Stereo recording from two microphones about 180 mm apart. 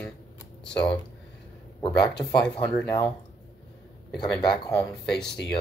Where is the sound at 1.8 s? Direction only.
25° left (ahead or behind).